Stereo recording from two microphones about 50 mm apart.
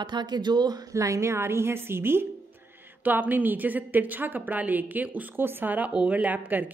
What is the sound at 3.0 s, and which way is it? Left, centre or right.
A woman's voice, right.